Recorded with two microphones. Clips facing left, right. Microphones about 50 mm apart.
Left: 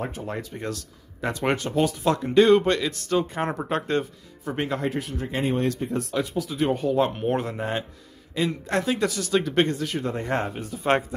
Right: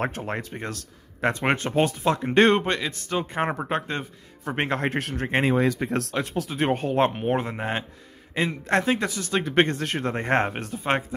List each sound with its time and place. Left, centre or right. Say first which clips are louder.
0.2 s speech: right 1 dB; right
2.0 s speech: left 2 dB; right
4.5 s speech: right 1 dB; right
5.4 s speech: right 2 dB; right
6.2 s speech: even; right
7.2 s speech: even; right
9.7 s speech: even; right
10.8 s speech: left 3 dB; centre